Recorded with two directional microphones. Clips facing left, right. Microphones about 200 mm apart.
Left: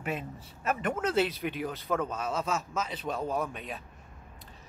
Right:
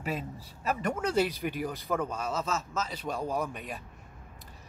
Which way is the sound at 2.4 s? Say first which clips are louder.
Left 1 dB; 15° left (ahead or behind).